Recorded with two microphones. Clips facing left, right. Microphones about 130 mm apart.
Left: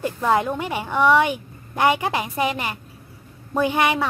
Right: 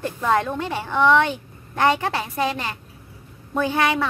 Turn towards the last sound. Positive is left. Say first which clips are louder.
# left 1 dB
turn(degrees=15)  # may be behind; listen again after turning